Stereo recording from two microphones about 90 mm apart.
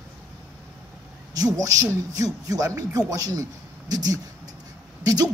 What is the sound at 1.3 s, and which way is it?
A woman's voice, 40° right (ahead or behind).